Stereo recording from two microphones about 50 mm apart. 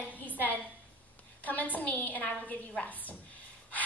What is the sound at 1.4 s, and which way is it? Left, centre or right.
A woman's voice, left.